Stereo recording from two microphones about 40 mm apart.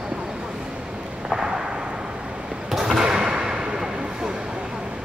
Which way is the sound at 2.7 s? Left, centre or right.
Centre.